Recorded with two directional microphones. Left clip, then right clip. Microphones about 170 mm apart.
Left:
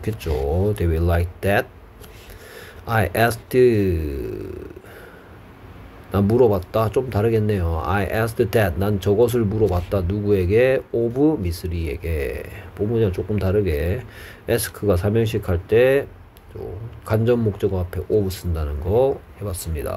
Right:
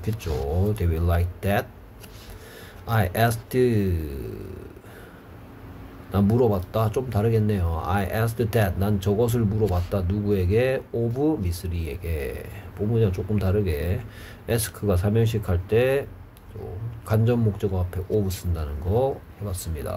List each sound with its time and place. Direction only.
0.0 s speech: 30° left (ahead or behind)
2.9 s speech: 30° left (ahead or behind)
6.1 s speech: 30° left (ahead or behind)